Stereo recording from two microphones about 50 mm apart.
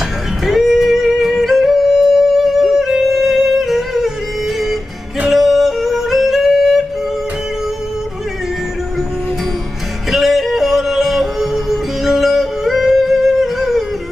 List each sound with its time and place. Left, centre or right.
0.5 s music: centre
5.3 s yodeling: centre
10.1 s yodeling: centre